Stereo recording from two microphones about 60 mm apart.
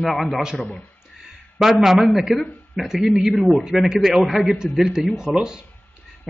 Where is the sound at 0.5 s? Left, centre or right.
Left.